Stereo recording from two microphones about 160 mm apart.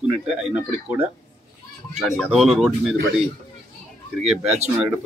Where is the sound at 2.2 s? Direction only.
Centre (ahead or behind).